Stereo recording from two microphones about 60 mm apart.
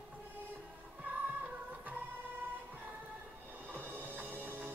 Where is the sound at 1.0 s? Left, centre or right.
Right.